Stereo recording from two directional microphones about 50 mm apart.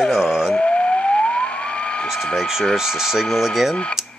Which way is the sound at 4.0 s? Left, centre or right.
Centre.